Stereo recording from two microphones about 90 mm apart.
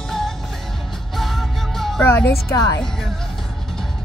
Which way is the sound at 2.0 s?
25° left (ahead or behind).